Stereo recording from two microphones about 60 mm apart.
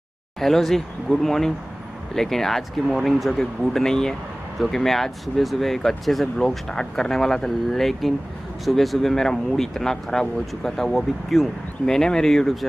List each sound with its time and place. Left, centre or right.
0.4 s speech: centre